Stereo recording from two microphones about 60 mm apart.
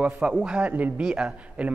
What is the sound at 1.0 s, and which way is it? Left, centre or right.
Speech, centre.